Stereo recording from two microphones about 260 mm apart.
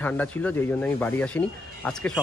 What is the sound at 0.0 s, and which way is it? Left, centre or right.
Speech, centre.